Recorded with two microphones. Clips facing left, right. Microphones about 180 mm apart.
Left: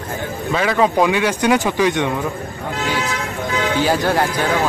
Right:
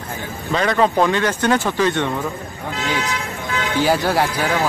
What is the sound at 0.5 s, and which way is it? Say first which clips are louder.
Speech: even; 5° left (ahead or behind).